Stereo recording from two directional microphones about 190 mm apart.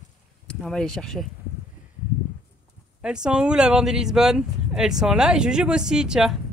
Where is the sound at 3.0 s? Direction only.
5° right (ahead or behind).